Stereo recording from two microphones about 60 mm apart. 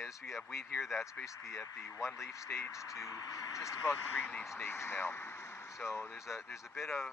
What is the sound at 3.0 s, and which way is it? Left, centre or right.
Speech, left.